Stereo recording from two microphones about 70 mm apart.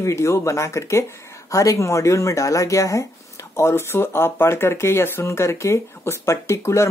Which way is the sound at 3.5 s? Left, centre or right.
Left.